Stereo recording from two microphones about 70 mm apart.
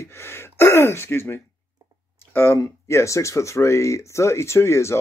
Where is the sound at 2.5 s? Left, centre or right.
Left.